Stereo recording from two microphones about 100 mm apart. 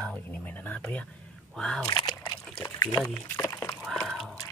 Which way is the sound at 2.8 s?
40° left (ahead or behind).